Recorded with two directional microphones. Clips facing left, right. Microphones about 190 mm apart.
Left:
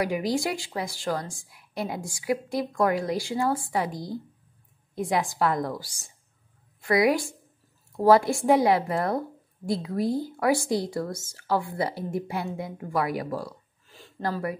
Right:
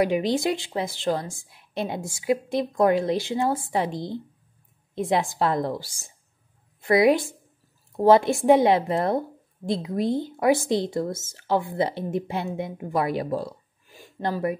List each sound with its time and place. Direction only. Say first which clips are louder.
0.0 s a woman's voice: right 4 dB; 25° right (ahead or behind)